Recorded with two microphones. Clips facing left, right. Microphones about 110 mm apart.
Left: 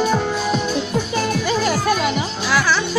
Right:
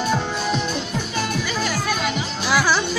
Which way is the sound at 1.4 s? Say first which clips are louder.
Left 6 dB; 45° left (ahead or behind).